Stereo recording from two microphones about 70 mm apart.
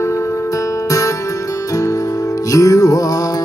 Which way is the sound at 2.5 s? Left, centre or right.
Left.